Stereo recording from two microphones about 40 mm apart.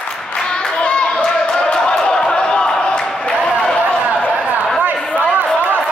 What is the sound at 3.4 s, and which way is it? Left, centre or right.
Run, centre.